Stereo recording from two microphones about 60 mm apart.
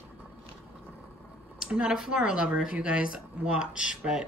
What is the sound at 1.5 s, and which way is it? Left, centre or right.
A woman's voice, centre.